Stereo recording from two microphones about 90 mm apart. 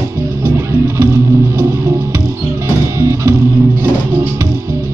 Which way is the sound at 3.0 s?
30° right (ahead or behind).